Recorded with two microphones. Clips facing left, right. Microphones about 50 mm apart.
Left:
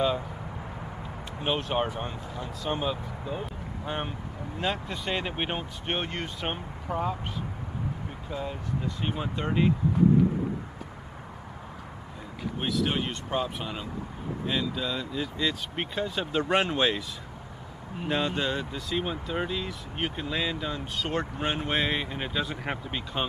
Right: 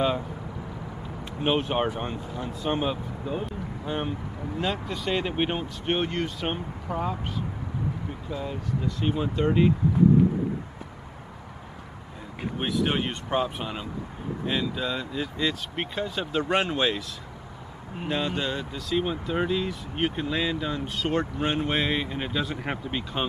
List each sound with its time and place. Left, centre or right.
1.4 s speech: centre
3.8 s speech: centre
8.3 s speech: centre
12.5 s speech: centre
18.0 s speech: centre